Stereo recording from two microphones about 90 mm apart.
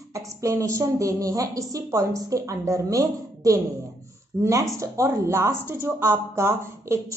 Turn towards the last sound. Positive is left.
turn(degrees=-30)  # may be behind; listen again after turning